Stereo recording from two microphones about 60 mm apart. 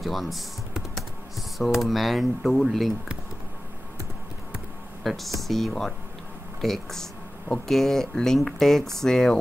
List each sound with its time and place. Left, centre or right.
0.0 s speech: centre
5.0 s speech: centre
7.4 s speech: centre
7.7 s speech: centre